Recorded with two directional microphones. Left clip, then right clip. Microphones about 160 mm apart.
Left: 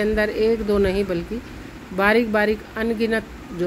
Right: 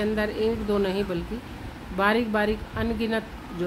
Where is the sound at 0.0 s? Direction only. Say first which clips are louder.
Left 6 dB; 15° left (ahead or behind).